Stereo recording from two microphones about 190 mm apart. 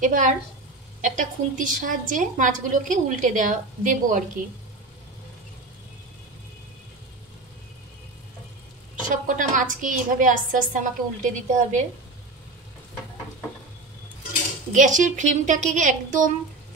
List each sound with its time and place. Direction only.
0.0 s a woman's voice: 45° right (ahead or behind)
9.0 s a woman's voice: 45° right (ahead or behind)
14.7 s a woman's voice: 40° right (ahead or behind)